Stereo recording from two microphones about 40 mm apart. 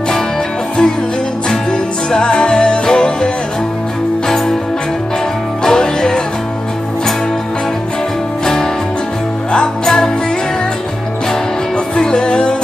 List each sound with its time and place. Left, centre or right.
1.7 s music: centre
5.6 s music: centre
9.8 s music: centre
11.9 s music: left